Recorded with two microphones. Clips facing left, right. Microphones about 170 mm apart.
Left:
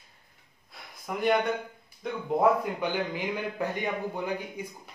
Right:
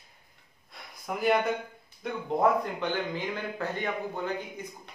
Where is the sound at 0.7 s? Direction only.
Centre (ahead or behind).